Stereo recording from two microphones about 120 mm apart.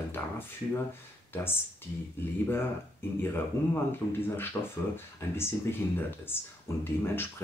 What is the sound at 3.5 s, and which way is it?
Speech, 20° left (ahead or behind).